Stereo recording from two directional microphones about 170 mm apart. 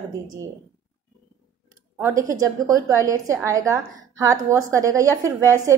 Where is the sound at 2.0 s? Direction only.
15° right (ahead or behind).